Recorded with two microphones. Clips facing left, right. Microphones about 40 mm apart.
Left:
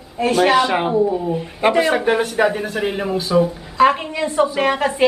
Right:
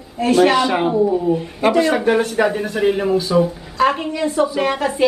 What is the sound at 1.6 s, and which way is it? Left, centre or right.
A woman's voice, centre.